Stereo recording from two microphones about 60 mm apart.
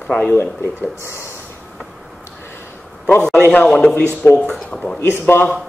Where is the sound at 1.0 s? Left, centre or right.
Left.